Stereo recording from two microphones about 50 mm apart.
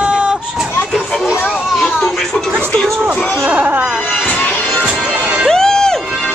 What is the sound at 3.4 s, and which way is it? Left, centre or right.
Music, right.